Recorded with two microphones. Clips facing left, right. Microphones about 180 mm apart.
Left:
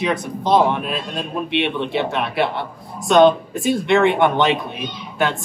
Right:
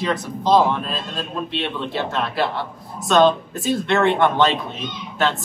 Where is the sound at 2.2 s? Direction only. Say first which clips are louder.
Left 2 dB; 65° left (ahead or behind).